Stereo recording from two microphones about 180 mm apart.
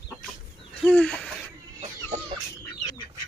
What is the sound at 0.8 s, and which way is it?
Speech, 5° left (ahead or behind).